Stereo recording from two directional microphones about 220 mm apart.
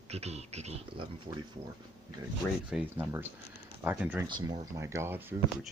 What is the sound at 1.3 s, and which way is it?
Speech, 15° right (ahead or behind).